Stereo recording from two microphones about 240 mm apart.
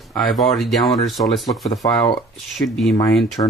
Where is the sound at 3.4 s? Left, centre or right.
Left.